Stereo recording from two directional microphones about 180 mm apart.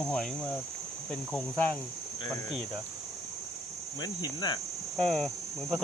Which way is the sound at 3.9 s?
20° left (ahead or behind).